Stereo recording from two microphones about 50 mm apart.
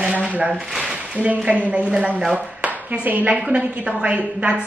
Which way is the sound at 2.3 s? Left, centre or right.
Right.